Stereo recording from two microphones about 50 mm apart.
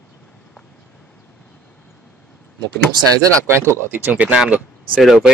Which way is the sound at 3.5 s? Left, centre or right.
Right.